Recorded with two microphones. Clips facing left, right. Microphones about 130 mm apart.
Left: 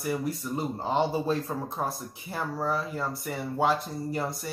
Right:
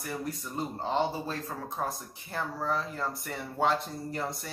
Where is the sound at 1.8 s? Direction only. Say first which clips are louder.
Left 2 dB; 15° left (ahead or behind).